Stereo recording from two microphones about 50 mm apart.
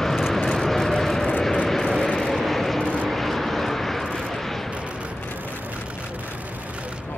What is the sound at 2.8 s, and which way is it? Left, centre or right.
Vehicle, left.